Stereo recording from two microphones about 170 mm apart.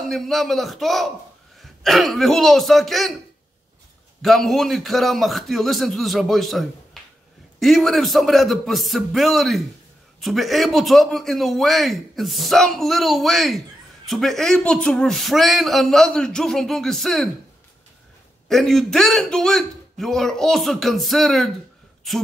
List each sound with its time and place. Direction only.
0.1 s speech: centre (ahead or behind)
4.2 s speech: centre (ahead or behind)
18.5 s speech: centre (ahead or behind)